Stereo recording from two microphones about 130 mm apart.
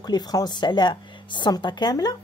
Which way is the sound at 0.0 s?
30° left (ahead or behind).